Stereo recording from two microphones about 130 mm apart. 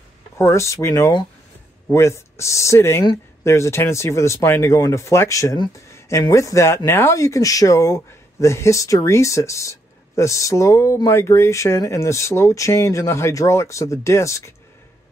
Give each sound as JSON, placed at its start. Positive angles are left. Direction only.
{"t": 0.4, "sound": "speech", "side_deg": 25}